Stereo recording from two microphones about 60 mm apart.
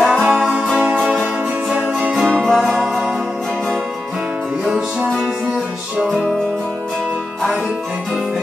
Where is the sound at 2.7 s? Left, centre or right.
Centre.